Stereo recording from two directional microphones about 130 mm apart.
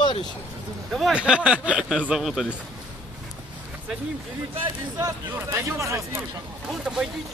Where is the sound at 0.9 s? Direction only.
5° right (ahead or behind).